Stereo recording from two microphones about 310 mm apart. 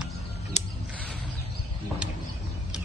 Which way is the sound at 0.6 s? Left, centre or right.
Left.